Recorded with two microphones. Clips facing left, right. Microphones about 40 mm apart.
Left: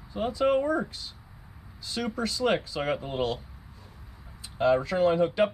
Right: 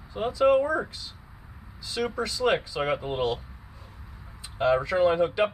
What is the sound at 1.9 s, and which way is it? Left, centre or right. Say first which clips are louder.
Speech: right 2 dB; right.